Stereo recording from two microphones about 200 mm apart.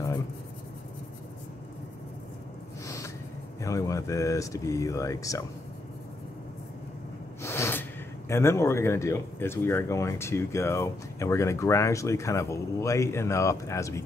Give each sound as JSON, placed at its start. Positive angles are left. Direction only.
{"t": 3.6, "sound": "speech", "side_deg": 15}
{"t": 7.4, "sound": "gasp", "side_deg": 10}
{"t": 8.3, "sound": "speech", "side_deg": 15}